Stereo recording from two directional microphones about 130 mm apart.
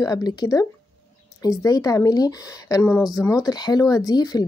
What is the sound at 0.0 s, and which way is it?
A woman's voice, 30° left (ahead or behind).